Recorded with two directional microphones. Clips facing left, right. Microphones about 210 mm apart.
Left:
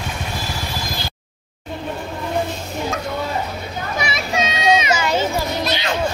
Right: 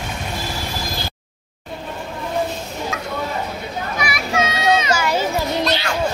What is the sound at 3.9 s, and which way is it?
Children playing, 25° left (ahead or behind).